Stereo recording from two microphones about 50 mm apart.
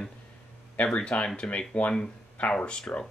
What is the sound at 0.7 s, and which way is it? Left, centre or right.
Speech, left.